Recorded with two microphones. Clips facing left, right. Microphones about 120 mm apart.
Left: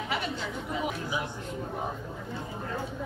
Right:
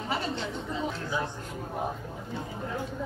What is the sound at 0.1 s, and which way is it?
Speech, 30° right (ahead or behind).